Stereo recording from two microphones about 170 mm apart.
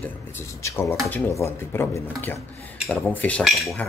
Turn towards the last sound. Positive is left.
turn(degrees=0)  # may be behind; listen again after turning